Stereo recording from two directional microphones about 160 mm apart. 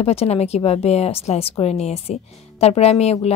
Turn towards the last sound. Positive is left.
turn(degrees=40)  # may be behind; listen again after turning